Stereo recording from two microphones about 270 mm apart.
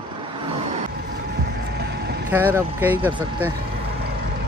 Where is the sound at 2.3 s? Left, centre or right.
Centre.